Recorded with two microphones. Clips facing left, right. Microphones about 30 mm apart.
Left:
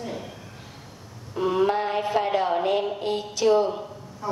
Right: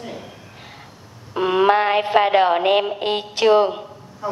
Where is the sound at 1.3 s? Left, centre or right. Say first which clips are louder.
Right 6 dB; right.